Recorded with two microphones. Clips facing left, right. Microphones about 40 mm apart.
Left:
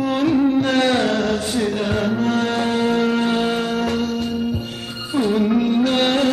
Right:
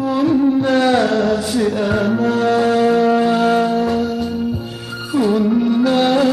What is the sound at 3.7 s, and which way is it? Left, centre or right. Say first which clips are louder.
Music: right 4 dB; left.